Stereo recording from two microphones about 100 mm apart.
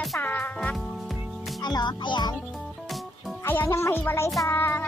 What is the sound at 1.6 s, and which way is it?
Speech, 45° left (ahead or behind).